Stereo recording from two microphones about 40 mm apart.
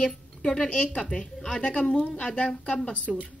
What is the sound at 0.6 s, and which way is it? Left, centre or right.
Speech, left.